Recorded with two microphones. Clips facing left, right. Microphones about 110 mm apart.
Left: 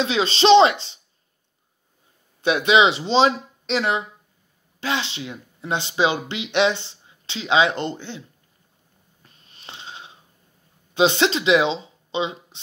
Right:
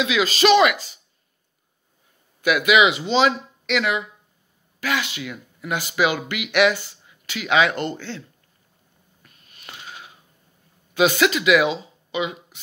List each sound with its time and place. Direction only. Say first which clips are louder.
0.0 s speech: even; 30° left (ahead or behind)
2.4 s speech: even; 30° left (ahead or behind)
9.2 s snoring: left 1 dB; 30° left (ahead or behind)
11.0 s speech: even; 30° left (ahead or behind)